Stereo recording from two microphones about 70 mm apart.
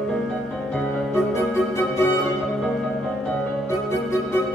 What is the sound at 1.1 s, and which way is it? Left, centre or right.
Music, left.